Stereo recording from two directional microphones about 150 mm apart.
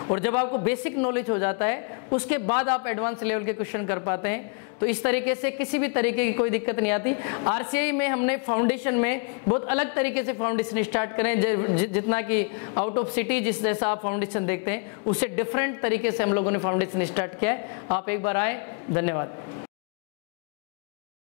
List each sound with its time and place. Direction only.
0.1 s a woman's voice: 15° left (ahead or behind)
12.6 s a woman's voice: 25° left (ahead or behind)
13.1 s a woman's voice: 10° left (ahead or behind)